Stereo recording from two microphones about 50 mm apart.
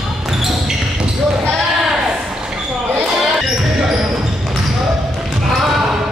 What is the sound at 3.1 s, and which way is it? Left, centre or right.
Basketball bounce, centre.